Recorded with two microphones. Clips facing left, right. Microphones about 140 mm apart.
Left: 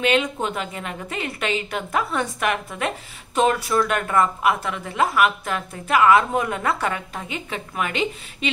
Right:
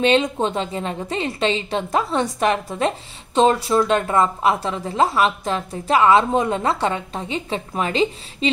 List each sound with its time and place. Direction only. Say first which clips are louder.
0.0 s a woman's voice: right 4 dB; 30° right (ahead or behind)